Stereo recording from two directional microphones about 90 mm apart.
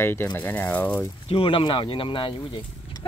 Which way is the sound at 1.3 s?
80° left.